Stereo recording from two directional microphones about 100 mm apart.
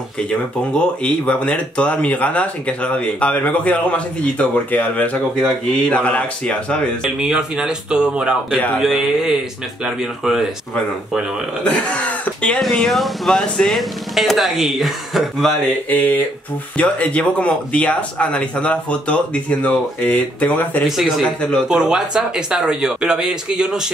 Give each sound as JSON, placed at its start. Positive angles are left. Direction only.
{"t": 0.3, "sound": "speech", "side_deg": 10}
{"t": 5.4, "sound": "speech", "side_deg": 5}
{"t": 7.2, "sound": "speech", "side_deg": -5}
{"t": 11.6, "sound": "speech", "side_deg": 10}
{"t": 15.9, "sound": "speech", "side_deg": 15}
{"t": 20.8, "sound": "speech", "side_deg": 0}
{"t": 21.4, "sound": "speech", "side_deg": 10}
{"t": 21.6, "sound": "speech", "side_deg": -5}